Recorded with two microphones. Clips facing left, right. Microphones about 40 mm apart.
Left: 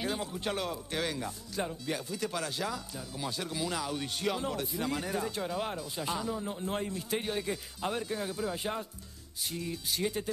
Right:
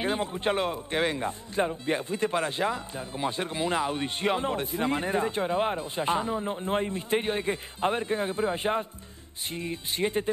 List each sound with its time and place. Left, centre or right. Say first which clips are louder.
0.0 s speech: right 6 dB; right